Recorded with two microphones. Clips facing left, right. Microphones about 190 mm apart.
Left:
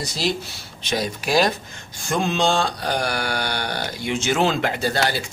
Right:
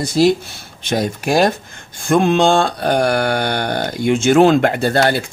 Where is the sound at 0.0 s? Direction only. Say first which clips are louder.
Right 11 dB; 55° right (ahead or behind).